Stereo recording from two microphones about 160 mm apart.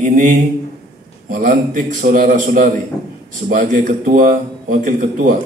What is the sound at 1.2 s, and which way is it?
A man's voice, 55° right (ahead or behind).